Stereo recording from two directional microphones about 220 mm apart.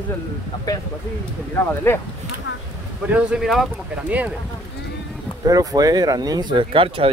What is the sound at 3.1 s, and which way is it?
Speech, 5° right (ahead or behind).